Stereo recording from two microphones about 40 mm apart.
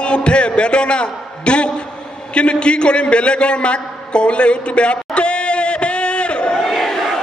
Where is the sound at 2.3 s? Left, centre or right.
Left.